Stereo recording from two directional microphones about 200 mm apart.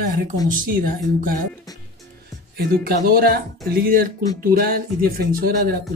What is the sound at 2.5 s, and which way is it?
Speech, 50° right (ahead or behind).